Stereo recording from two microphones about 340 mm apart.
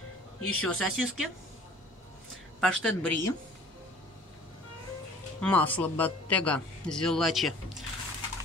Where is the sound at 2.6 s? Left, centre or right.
Centre.